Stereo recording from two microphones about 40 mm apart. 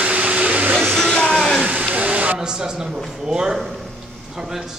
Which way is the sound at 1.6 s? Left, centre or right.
Right.